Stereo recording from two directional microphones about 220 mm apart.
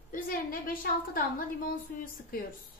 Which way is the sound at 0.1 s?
40° left (ahead or behind).